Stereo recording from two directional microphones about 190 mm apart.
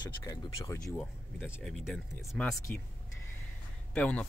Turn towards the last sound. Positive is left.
turn(degrees=10)  # may be behind; listen again after turning